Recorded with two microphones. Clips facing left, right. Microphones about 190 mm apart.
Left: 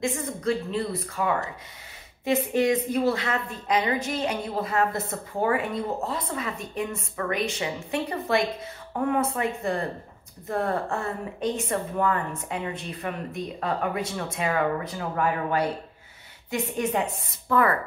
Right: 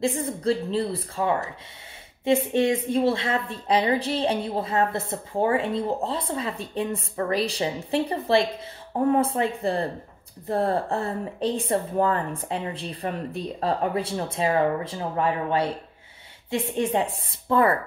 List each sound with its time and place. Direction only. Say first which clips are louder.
0.0 s a woman's voice: right 3 dB; 30° right (ahead or behind)